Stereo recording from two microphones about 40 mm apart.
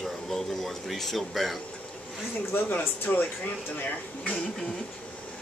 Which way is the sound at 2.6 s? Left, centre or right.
Left.